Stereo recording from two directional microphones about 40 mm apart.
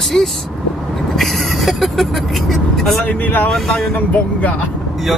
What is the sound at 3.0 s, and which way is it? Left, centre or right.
Speech, left.